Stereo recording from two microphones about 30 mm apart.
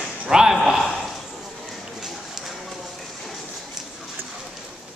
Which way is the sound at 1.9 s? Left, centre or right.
Centre.